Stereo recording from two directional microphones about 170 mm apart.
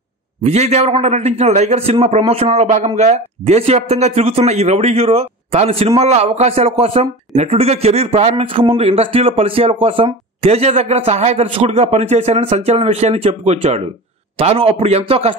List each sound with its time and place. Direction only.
0.4 s speech: 40° right (ahead or behind)